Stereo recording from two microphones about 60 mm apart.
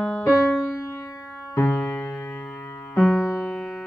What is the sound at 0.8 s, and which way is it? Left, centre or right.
Music, left.